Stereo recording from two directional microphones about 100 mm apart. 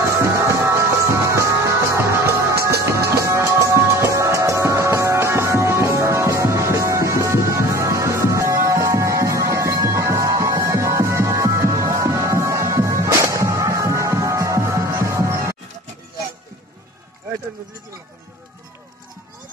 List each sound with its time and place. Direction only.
0.0 s music: 30° right (ahead or behind)